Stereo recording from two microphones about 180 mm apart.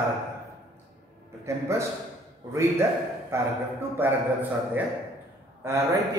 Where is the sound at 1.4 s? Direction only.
15° right (ahead or behind).